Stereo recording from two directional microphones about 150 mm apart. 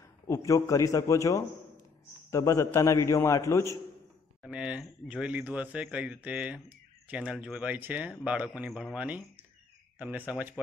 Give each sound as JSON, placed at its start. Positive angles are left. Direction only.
{"t": 0.3, "sound": "a man's voice", "side_deg": 20}
{"t": 4.4, "sound": "speech", "side_deg": -5}